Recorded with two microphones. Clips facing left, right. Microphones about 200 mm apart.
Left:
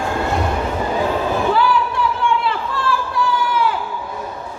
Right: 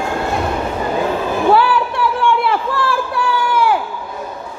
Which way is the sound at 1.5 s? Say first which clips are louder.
Right 2 dB; 70° right (ahead or behind).